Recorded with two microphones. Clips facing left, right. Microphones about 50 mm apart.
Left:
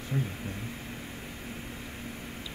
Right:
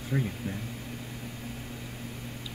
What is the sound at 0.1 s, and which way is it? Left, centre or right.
Speech, right.